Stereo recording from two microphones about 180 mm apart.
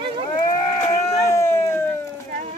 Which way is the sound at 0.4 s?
20° left (ahead or behind).